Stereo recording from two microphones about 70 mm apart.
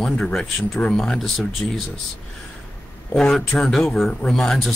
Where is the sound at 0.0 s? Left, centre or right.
Centre.